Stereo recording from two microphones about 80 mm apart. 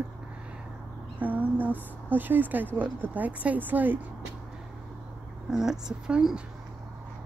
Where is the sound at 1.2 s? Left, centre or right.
Right.